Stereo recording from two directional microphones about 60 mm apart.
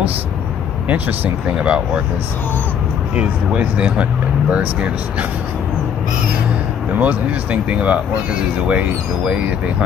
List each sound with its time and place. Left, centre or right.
0.8 s speech: right
3.2 s speech: right
7.0 s speech: right